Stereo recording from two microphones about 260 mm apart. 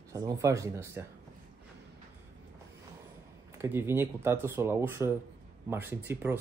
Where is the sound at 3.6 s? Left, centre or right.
Centre.